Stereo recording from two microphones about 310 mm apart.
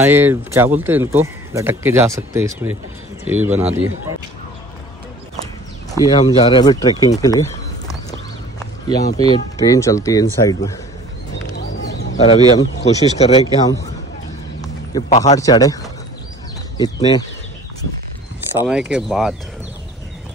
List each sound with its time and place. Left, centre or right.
0.0 s speech: centre
5.9 s speech: centre
8.8 s speech: centre
11.5 s bird: left
12.8 s speech: centre
14.6 s a sound: centre
15.3 s speech: centre
18.7 s speech: centre